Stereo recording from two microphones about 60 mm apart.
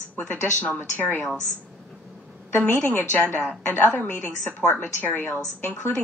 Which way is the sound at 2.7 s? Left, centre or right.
Left.